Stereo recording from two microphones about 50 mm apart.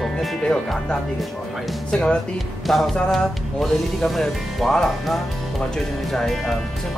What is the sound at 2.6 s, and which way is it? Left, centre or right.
Music, centre.